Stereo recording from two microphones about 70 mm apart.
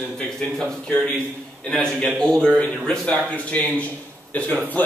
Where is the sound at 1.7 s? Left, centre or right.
Centre.